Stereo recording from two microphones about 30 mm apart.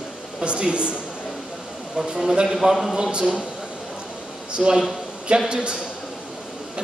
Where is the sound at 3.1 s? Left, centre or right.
Right.